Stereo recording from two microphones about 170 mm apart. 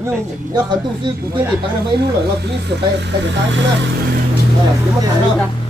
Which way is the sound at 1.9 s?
75° right (ahead or behind).